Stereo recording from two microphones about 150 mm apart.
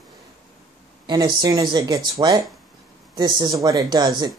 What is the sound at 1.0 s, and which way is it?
Speech, 30° right (ahead or behind).